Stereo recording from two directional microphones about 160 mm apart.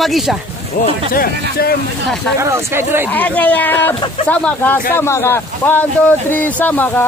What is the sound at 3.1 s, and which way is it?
Speech, 10° left (ahead or behind).